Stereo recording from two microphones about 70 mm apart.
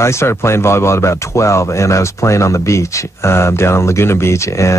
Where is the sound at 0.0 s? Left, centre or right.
Left.